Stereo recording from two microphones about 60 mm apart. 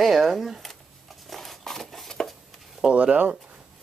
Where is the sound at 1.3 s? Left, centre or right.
Centre.